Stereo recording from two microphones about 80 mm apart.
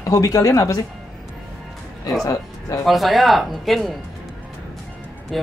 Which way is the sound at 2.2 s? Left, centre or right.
Left.